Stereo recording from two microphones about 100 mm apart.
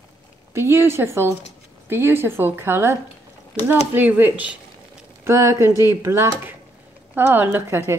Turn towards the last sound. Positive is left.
turn(degrees=-25)  # may be behind; listen again after turning